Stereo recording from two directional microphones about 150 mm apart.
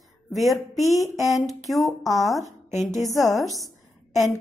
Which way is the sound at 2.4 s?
50° left (ahead or behind).